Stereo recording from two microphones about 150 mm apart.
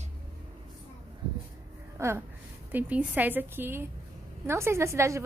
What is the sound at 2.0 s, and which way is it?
A woman's voice, 20° right (ahead or behind).